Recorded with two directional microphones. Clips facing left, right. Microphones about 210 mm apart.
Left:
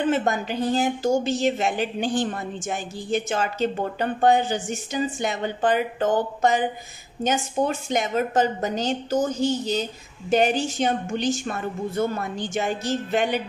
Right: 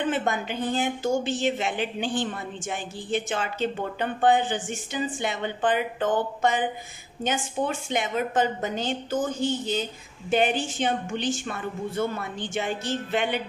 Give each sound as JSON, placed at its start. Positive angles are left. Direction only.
{"t": 0.1, "sound": "a woman's voice", "side_deg": 40}